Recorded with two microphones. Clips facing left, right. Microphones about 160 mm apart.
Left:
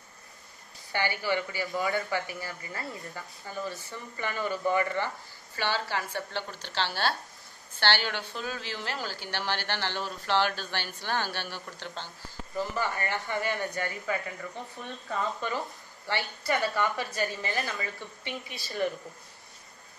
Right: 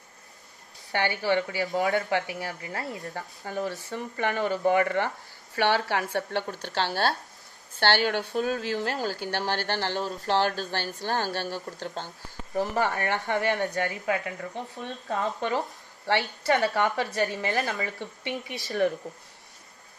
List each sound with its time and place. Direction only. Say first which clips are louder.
1.2 s a woman's voice: right 4 dB; 75° right (ahead or behind)
1.8 s speech: right 4 dB; 85° right
3.2 s a woman's voice: right 7 dB; 70° right (ahead or behind); by 12.1 s 45° right (ahead or behind)
12.5 s a woman's voice: right 5 dB; 70° right (ahead or behind)
13.7 s speech: right 5 dB; 90° right
15.0 s a woman's voice: right 4 dB; 70° right (ahead or behind)